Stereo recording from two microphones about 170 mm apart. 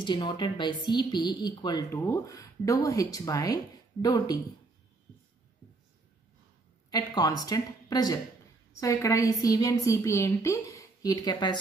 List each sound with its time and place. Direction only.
0.0 s speech: 25° left (ahead or behind)
6.9 s speech: 20° left (ahead or behind)